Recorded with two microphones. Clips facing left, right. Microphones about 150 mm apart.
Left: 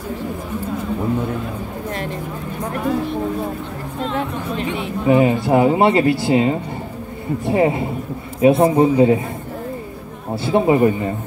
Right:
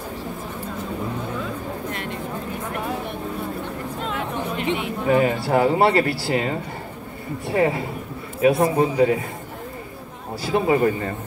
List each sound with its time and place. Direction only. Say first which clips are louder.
5.0 s speech: left 5 dB; 20° left (ahead or behind)
10.3 s speech: left 4 dB; 25° left (ahead or behind)